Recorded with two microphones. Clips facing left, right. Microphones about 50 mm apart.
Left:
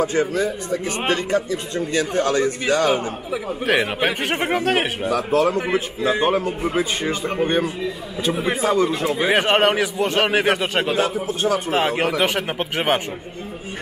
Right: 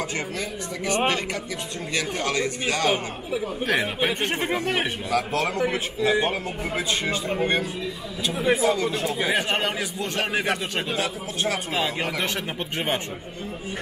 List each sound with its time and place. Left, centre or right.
0.0 s speech: left
5.5 s speech: left
8.4 s a man's voice: left
9.3 s speech: left